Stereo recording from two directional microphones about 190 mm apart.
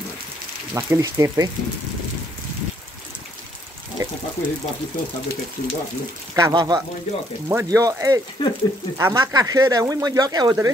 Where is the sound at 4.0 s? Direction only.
20° right (ahead or behind).